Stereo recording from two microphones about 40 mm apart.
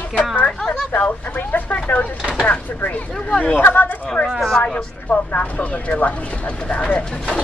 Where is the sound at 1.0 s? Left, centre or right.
Left.